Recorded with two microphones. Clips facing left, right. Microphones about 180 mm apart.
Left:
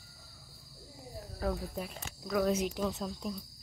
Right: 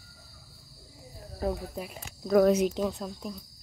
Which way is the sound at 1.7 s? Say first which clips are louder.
Right 2 dB; 5° right (ahead or behind).